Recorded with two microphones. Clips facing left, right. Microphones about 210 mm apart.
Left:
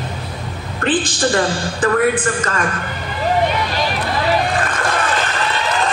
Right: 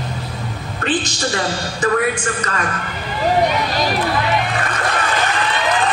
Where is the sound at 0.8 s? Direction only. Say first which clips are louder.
Left 3 dB; 55° left (ahead or behind).